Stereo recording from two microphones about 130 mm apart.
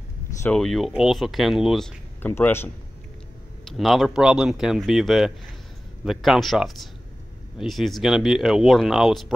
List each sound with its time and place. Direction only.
0.5 s speech: centre (ahead or behind)
2.2 s a man's voice: 15° left (ahead or behind)
3.6 s speech: centre (ahead or behind)